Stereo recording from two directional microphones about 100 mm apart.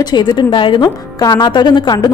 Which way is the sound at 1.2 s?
45° left (ahead or behind).